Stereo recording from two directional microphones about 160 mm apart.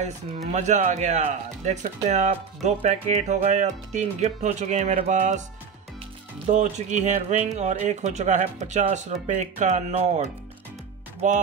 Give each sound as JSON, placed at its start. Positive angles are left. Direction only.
{"t": 0.5, "sound": "speech", "side_deg": -45}
{"t": 6.4, "sound": "speech", "side_deg": -45}